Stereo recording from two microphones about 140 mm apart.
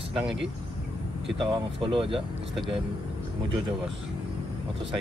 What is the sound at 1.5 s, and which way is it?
Speech, 40° right (ahead or behind).